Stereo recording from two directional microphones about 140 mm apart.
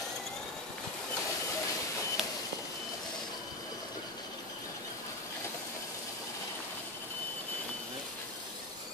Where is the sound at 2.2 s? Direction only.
5° right (ahead or behind).